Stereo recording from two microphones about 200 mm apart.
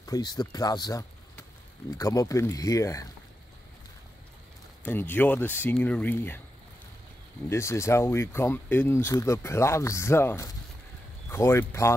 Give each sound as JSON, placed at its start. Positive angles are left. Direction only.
{"t": 0.0, "sound": "speech", "side_deg": 20}
{"t": 4.8, "sound": "speech", "side_deg": 10}
{"t": 7.4, "sound": "speech", "side_deg": 15}